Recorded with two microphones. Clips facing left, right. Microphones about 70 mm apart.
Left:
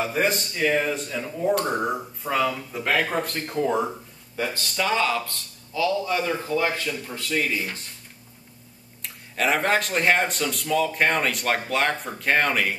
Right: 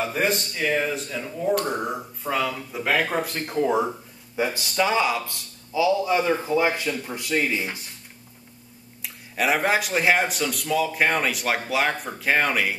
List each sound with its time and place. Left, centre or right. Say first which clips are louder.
0.0 s speech: even; centre
9.0 s speech: even; centre